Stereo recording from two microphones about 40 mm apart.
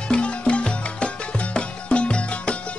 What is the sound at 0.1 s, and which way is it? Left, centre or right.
Music, left.